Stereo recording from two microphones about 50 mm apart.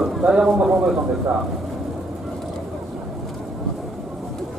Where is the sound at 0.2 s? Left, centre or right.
Centre.